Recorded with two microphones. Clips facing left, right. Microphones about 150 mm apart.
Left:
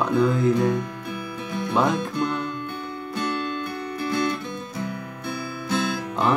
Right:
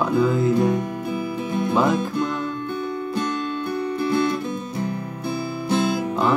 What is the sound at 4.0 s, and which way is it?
Music, 25° right (ahead or behind).